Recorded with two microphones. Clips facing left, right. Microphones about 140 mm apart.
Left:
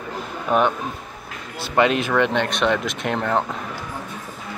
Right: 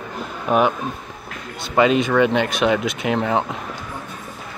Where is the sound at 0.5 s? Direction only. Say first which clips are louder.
Right 2 dB; 5° right (ahead or behind).